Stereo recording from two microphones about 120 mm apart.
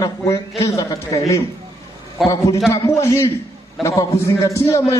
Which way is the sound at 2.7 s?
25° left (ahead or behind).